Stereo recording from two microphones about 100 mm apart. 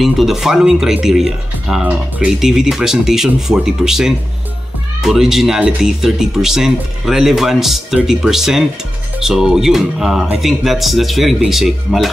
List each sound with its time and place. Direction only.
0.0 s speech: 5° right (ahead or behind)
1.9 s speech: 15° right (ahead or behind)